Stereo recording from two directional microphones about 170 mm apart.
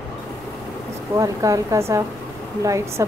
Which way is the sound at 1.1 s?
20° right (ahead or behind).